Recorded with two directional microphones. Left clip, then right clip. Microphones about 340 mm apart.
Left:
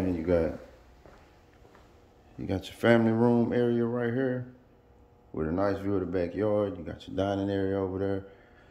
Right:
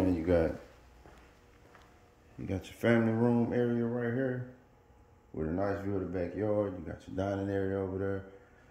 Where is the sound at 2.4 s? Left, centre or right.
Centre.